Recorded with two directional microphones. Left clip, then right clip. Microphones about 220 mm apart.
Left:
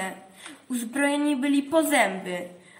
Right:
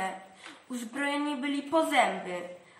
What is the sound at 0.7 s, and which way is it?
A woman's voice, 50° left (ahead or behind).